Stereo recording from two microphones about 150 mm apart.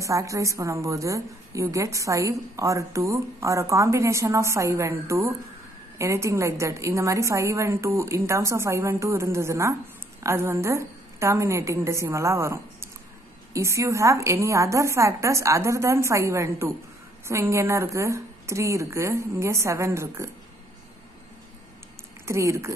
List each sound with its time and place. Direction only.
0.0 s a woman's voice: 20° right (ahead or behind)
22.2 s a woman's voice: 20° right (ahead or behind)